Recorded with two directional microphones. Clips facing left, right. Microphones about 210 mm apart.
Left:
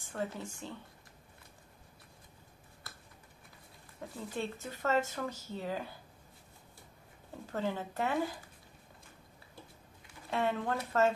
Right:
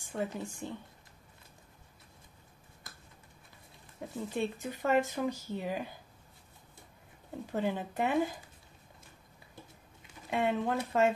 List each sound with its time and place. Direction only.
0.0 s speech: 15° right (ahead or behind)
4.1 s speech: 15° right (ahead or behind)
7.5 s speech: 15° right (ahead or behind)
10.3 s speech: 15° right (ahead or behind)